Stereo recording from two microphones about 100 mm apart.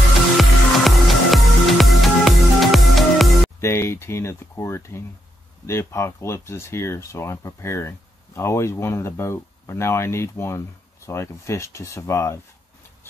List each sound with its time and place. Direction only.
0.4 s music: centre (ahead or behind)
3.6 s speech: 25° left (ahead or behind)